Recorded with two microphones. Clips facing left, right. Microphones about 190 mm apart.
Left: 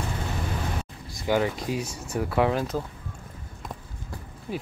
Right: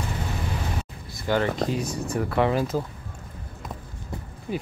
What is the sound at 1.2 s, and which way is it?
Speech, 5° left (ahead or behind).